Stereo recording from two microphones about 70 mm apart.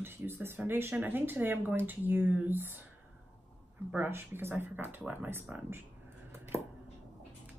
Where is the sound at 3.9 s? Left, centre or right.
Right.